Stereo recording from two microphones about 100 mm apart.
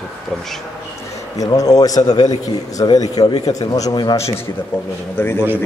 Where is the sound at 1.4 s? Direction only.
35° left (ahead or behind).